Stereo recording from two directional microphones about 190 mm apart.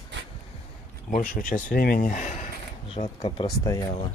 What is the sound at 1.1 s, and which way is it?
Speech, 45° left (ahead or behind).